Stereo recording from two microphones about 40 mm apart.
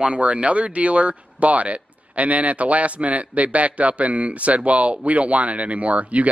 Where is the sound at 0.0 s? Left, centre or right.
Right.